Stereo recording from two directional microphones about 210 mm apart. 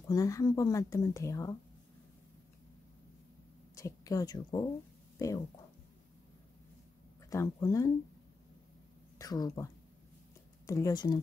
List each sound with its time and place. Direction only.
0.1 s speech: 15° left (ahead or behind)
3.7 s a woman's voice: 15° left (ahead or behind)
7.2 s speech: 15° left (ahead or behind)
9.2 s speech: 15° left (ahead or behind)
10.7 s speech: 15° left (ahead or behind)